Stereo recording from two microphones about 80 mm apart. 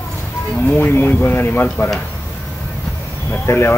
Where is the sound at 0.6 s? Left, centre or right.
Left.